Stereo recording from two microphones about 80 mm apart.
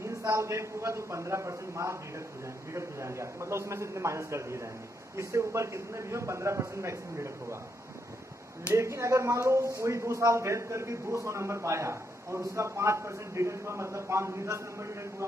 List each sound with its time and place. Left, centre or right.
0.0 s speech: right
8.7 s speech: right